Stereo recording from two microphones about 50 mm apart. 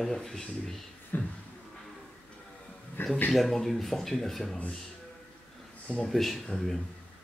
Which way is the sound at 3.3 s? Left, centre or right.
Centre.